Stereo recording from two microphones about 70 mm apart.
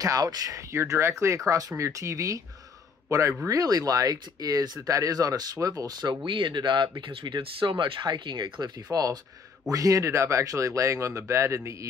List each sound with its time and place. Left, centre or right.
0.2 s a man's voice: right
3.4 s speech: right
8.9 s speech: right